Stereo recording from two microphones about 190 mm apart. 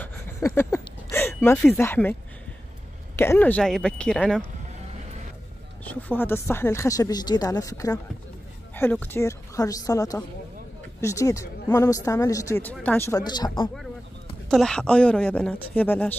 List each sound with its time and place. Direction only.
0.0 s a sound: 10° left (ahead or behind)
1.8 s speech: 10° left (ahead or behind)
3.2 s speech: 10° left (ahead or behind)
5.9 s speech: 10° left (ahead or behind)
14.5 s speech: centre (ahead or behind)